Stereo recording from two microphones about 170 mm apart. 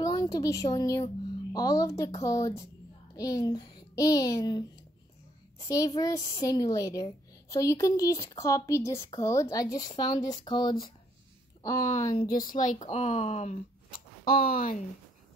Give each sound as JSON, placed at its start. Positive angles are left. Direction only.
{"t": 0.0, "sound": "a woman's voice", "side_deg": 20}
{"t": 5.7, "sound": "a woman's voice", "side_deg": 20}
{"t": 12.3, "sound": "speech", "side_deg": 55}
{"t": 14.2, "sound": "speech", "side_deg": 60}